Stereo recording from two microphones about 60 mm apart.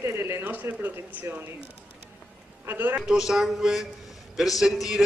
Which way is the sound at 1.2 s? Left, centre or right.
Right.